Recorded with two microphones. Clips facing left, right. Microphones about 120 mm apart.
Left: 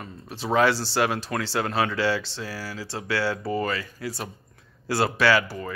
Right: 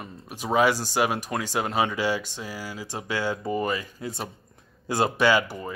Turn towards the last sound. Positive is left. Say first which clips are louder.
# even
turn(degrees=-20)  # may be behind; listen again after turning